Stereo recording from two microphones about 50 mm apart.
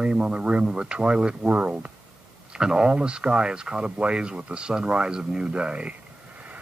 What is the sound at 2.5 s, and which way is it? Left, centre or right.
Speech, centre.